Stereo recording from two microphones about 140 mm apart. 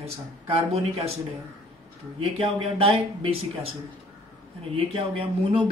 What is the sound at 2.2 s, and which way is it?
A man's voice, 40° right (ahead or behind).